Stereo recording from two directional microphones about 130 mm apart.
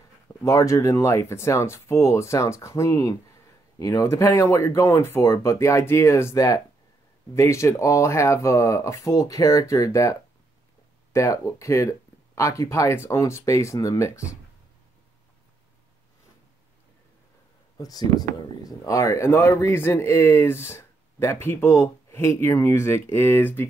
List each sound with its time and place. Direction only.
0.4 s speech: 25° left (ahead or behind)
11.1 s speech: 25° left (ahead or behind)
17.7 s speech: 30° left (ahead or behind)